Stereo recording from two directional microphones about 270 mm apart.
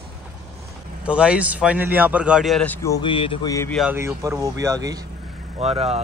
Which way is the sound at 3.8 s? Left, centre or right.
Centre.